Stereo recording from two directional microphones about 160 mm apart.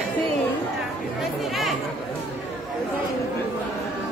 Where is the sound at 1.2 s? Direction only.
Centre (ahead or behind).